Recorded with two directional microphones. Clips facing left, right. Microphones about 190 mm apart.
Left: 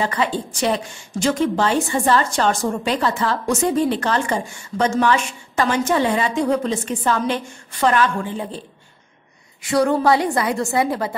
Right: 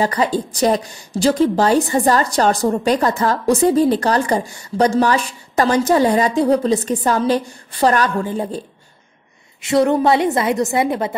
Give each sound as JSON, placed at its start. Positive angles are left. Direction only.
{"t": 0.0, "sound": "a woman's voice", "side_deg": -40}
{"t": 9.6, "sound": "a woman's voice", "side_deg": -25}